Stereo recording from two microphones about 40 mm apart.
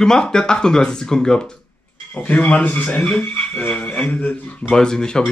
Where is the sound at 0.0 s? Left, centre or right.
Centre.